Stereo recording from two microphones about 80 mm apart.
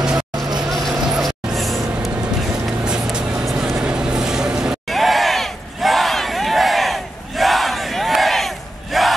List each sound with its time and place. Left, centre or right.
0.7 s vehicle: centre
1.0 s music: centre
2.8 s vehicle: centre